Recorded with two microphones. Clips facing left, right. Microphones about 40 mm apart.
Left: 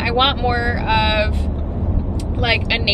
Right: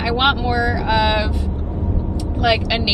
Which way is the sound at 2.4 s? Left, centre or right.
Left.